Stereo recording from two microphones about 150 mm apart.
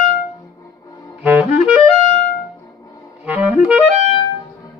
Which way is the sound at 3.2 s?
10° right (ahead or behind).